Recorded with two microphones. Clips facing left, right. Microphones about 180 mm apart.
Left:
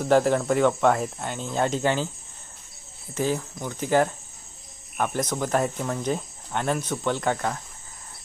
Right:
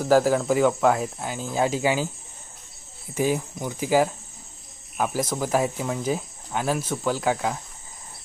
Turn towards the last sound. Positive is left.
turn(degrees=-5)  # may be behind; listen again after turning